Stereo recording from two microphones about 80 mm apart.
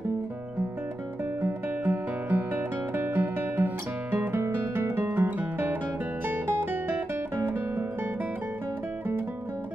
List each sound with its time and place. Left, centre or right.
1.4 s guitar: right
5.1 s music: right